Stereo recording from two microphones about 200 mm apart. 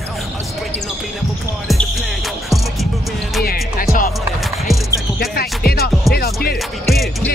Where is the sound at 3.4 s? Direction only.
50° left (ahead or behind).